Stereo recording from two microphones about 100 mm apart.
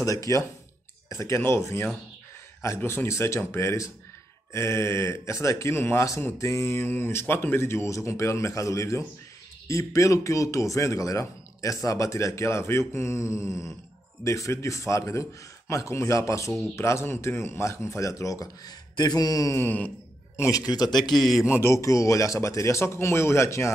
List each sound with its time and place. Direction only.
0.0 s a man's voice: 35° left (ahead or behind)
19.6 s a sound: 15° left (ahead or behind)
20.3 s a man's voice: 35° left (ahead or behind)
21.2 s speech: centre (ahead or behind)
21.5 s speech: 30° left (ahead or behind)